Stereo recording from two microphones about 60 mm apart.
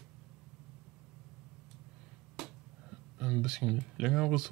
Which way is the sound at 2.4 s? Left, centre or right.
Centre.